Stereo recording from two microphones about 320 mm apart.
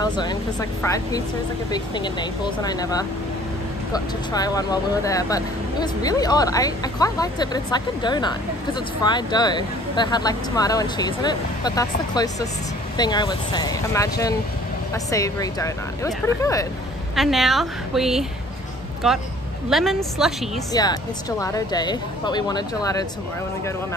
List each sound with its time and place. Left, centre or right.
0.0 s a woman's voice: centre
20.7 s speech: centre